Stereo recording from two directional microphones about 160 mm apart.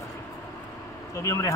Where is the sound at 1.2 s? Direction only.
20° left (ahead or behind).